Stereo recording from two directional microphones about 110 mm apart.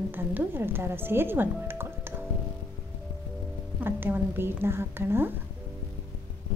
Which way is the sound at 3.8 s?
20° right (ahead or behind).